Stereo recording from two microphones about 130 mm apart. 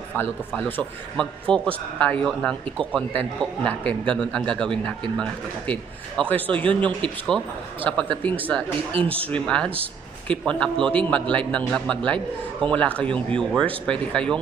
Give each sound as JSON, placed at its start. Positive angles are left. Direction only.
{"t": 0.2, "sound": "a man's voice", "side_deg": 15}